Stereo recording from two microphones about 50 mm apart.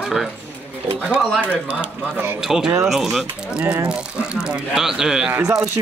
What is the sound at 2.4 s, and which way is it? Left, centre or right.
Speech, centre.